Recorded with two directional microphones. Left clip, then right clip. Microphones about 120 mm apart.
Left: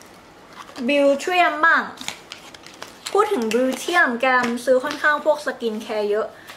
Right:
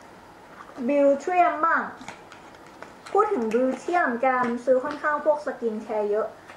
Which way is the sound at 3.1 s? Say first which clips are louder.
Left 3 dB; 30° left (ahead or behind).